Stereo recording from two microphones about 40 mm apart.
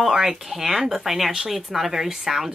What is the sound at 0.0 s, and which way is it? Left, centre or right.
Speech, centre.